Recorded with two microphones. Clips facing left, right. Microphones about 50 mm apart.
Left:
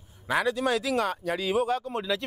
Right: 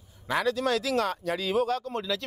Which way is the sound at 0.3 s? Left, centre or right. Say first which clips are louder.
Left 1 dB; centre.